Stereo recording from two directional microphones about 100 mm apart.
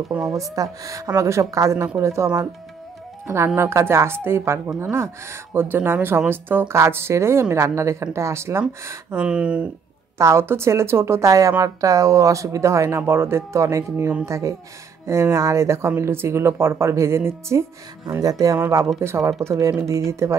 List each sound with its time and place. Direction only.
0.3 s speech: 35° right (ahead or behind)
9.1 s speech: 10° right (ahead or behind)
10.1 s speech: 30° right (ahead or behind)
18.1 s speech: 35° right (ahead or behind)